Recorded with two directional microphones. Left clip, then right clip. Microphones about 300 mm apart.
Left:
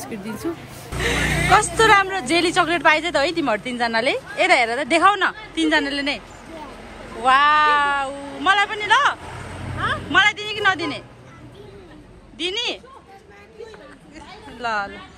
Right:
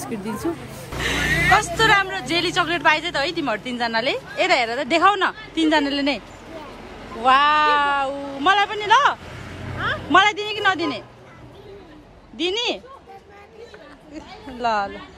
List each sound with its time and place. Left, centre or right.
0.9 s speech: centre
7.2 s speech: centre
12.4 s speech: centre
14.6 s speech: centre